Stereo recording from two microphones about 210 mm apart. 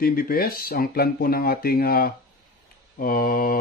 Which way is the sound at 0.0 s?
45° left (ahead or behind).